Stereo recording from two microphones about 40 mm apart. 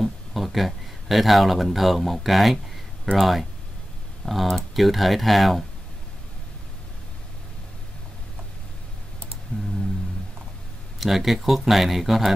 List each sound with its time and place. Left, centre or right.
0.0 s speech: centre
9.5 s music: left
11.0 s speech: centre